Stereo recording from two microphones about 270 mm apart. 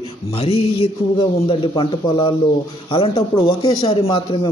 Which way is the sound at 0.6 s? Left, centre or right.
Centre.